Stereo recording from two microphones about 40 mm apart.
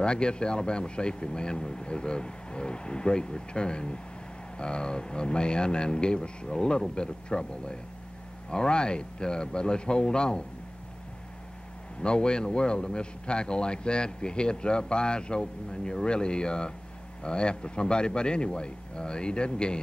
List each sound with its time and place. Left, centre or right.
0.0 s a man's voice: left
12.0 s a man's voice: left